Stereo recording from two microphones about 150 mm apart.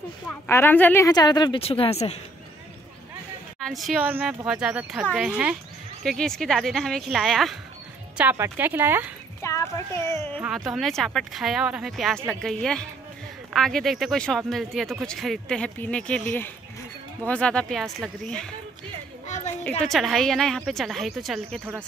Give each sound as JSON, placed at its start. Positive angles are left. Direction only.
{"t": 0.3, "sound": "a woman's voice", "side_deg": 15}
{"t": 1.6, "sound": "speech", "side_deg": 40}
{"t": 3.5, "sound": "a woman's voice", "side_deg": 0}
{"t": 8.2, "sound": "speech", "side_deg": -10}
{"t": 9.4, "sound": "speech", "side_deg": 20}
{"t": 10.7, "sound": "speech", "side_deg": 0}
{"t": 19.2, "sound": "a sound", "side_deg": 50}
{"t": 19.8, "sound": "speech", "side_deg": 0}